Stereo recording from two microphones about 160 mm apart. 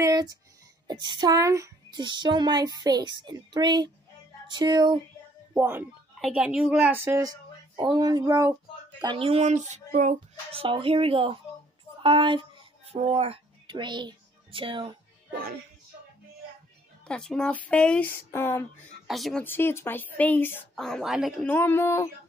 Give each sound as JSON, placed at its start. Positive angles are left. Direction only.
{"t": 0.0, "sound": "speech", "side_deg": -25}
{"t": 5.5, "sound": "speech", "side_deg": -15}
{"t": 6.1, "sound": "a woman's voice", "side_deg": -5}
{"t": 9.0, "sound": "speech", "side_deg": -35}
{"t": 10.6, "sound": "speech", "side_deg": -35}
{"t": 17.1, "sound": "speech", "side_deg": 5}
{"t": 19.0, "sound": "a woman's voice", "side_deg": 0}
{"t": 19.4, "sound": "a woman's voice", "side_deg": 15}
{"t": 21.5, "sound": "speech", "side_deg": 15}